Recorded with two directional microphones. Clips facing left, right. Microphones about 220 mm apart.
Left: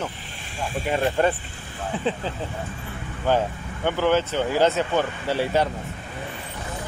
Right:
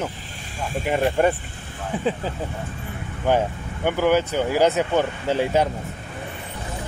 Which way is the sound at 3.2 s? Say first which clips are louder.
Right 2 dB; 15° right (ahead or behind).